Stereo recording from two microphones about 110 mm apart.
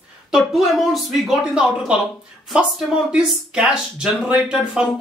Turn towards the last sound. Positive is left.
turn(degrees=-5)  # may be behind; listen again after turning